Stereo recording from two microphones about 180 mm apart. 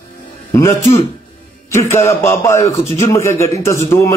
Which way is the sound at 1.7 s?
15° left (ahead or behind).